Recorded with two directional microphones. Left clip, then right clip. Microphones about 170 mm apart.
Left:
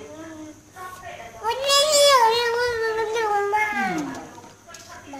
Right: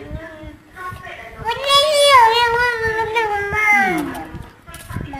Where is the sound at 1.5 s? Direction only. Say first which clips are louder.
Right 4 dB; 25° left (ahead or behind).